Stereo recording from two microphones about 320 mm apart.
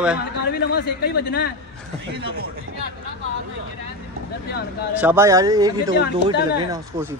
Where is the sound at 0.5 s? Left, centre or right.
Left.